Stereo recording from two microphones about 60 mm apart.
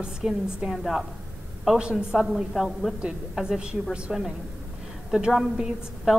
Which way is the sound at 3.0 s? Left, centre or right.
Centre.